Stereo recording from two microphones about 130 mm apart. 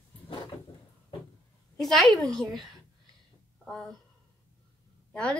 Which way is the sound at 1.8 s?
Centre (ahead or behind).